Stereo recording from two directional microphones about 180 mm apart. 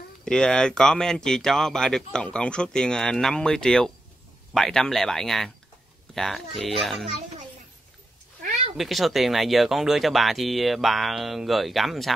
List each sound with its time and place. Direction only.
0.2 s speech: 5° left (ahead or behind)
8.4 s cat: 40° right (ahead or behind)
8.7 s speech: centre (ahead or behind)